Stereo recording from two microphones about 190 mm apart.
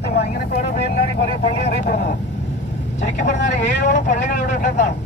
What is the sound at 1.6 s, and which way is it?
Speech, 50° left (ahead or behind).